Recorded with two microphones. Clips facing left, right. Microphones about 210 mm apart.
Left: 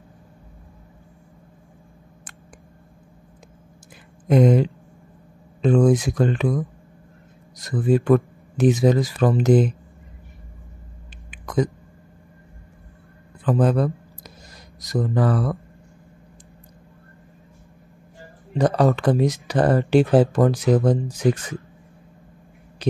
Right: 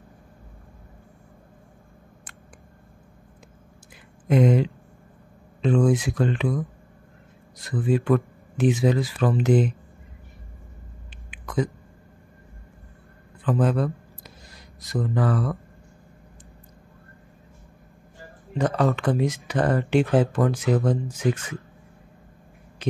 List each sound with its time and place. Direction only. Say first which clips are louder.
4.3 s speech: left 3 dB; 40° left (ahead or behind)
11.2 s hiccup: left 4 dB; 40° left (ahead or behind)
13.5 s a sound: left 3 dB; 35° left (ahead or behind)
14.8 s speech: left 3 dB; 40° left (ahead or behind)
18.9 s speech: left 4 dB; 35° left (ahead or behind)